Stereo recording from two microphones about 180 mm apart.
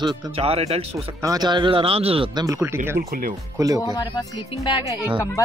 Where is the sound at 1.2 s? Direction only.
20° right (ahead or behind).